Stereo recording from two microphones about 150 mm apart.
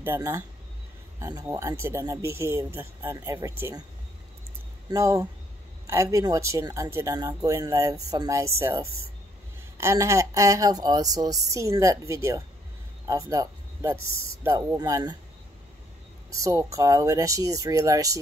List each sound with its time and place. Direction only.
0.0 s speech: 15° right (ahead or behind)
4.8 s speech: 20° right (ahead or behind)
16.3 s speech: 20° right (ahead or behind)